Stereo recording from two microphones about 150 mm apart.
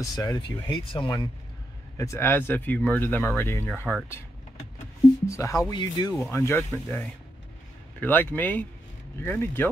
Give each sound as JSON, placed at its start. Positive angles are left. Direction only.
{"t": 0.0, "sound": "speech", "side_deg": 25}
{"t": 2.0, "sound": "speech", "side_deg": 20}
{"t": 5.2, "sound": "speech", "side_deg": 20}